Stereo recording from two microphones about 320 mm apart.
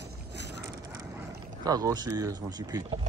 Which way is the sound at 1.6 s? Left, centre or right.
Centre.